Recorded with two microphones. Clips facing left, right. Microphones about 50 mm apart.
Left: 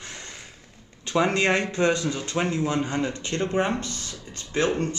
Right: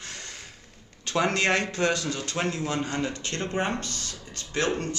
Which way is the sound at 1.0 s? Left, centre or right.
Centre.